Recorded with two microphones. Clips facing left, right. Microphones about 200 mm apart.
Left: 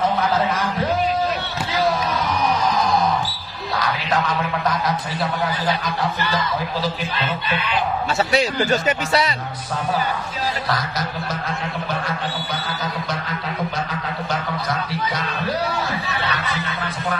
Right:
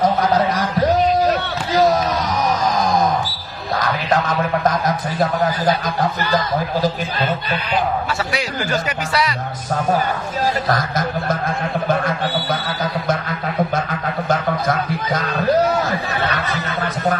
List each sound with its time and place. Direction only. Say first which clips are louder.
0.0 s music: right 3 dB; 40° right (ahead or behind)
3.7 s music: right 4 dB; 45° right (ahead or behind)
4.6 s a sound: right 4 dB; 45° right (ahead or behind)
8.3 s speech: left 3 dB; 25° left (ahead or behind)
10.7 s music: right 5 dB; 50° right (ahead or behind)
14.3 s music: right 7 dB; 45° right (ahead or behind)